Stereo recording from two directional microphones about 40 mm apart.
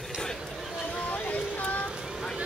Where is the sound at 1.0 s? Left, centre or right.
Left.